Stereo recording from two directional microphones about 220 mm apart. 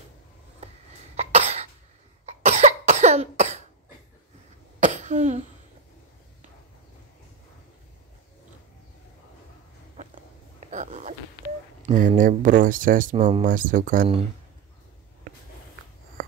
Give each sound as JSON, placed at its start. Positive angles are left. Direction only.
{"t": 1.1, "sound": "cough", "side_deg": -30}
{"t": 4.7, "sound": "cough", "side_deg": -35}
{"t": 10.7, "sound": "a sound", "side_deg": -35}
{"t": 11.8, "sound": "speech", "side_deg": -35}
{"t": 16.2, "sound": "writing", "side_deg": -40}